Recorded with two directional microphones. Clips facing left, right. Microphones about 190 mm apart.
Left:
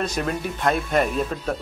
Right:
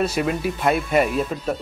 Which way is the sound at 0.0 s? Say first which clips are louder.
Right 4 dB; 5° right (ahead or behind).